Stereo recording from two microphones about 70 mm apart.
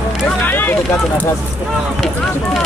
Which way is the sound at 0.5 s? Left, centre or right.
Left.